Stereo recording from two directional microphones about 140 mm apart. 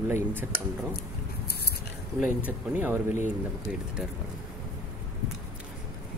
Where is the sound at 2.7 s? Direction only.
15° right (ahead or behind).